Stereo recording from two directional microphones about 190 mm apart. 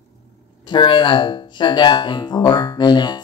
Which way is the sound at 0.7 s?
25° left (ahead or behind).